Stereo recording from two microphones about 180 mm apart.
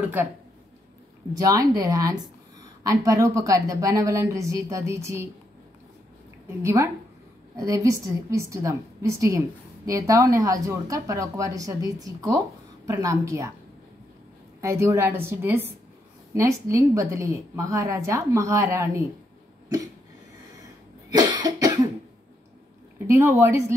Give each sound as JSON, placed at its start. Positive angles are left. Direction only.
{"t": 1.3, "sound": "a woman's voice", "side_deg": -20}
{"t": 6.6, "sound": "a woman's voice", "side_deg": -15}
{"t": 14.6, "sound": "a woman's voice", "side_deg": -15}
{"t": 21.1, "sound": "cough", "side_deg": -25}
{"t": 22.9, "sound": "speech", "side_deg": -15}